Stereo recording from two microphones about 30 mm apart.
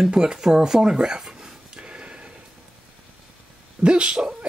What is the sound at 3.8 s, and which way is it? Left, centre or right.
Speech, right.